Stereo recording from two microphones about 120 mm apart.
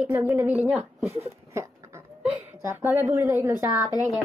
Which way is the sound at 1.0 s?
25° right (ahead or behind).